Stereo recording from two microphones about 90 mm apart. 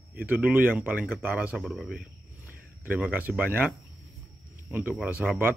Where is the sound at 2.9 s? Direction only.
15° right (ahead or behind).